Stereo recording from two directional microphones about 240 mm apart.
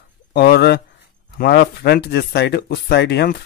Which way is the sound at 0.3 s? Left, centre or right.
Left.